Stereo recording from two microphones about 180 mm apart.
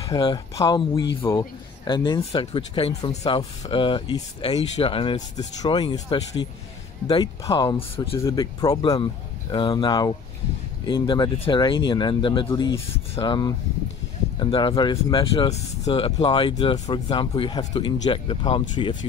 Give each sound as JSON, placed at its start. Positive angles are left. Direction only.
{"t": 0.0, "sound": "speech", "side_deg": 25}
{"t": 7.4, "sound": "speech", "side_deg": 20}
{"t": 12.9, "sound": "speech", "side_deg": 30}